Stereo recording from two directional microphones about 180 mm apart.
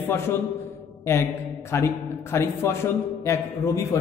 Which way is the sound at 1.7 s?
15° left (ahead or behind).